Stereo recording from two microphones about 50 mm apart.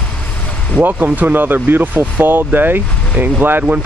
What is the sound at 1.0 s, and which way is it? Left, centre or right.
Speech, right.